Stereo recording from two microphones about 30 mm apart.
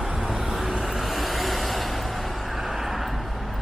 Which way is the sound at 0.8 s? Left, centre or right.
Centre.